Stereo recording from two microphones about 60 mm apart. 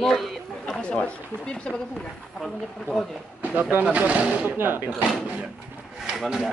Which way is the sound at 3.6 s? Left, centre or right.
Right.